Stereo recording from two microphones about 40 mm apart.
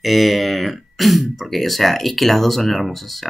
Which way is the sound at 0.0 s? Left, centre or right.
Centre.